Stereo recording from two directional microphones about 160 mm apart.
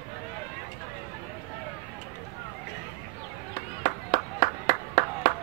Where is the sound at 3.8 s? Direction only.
55° left (ahead or behind).